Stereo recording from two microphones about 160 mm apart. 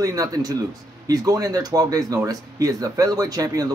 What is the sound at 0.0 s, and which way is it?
Speech, 20° right (ahead or behind).